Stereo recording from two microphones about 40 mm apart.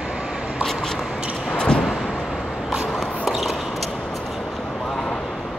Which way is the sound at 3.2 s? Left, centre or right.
Centre.